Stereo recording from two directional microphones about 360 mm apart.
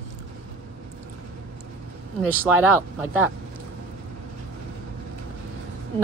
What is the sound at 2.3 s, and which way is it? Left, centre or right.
Speech, centre.